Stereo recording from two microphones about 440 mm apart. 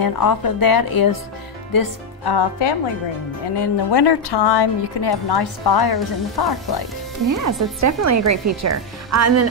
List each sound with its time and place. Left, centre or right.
0.0 s a woman's voice: left
7.2 s speech: right